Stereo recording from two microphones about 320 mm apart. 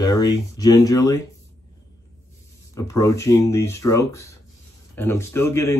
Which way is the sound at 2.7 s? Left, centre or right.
Centre.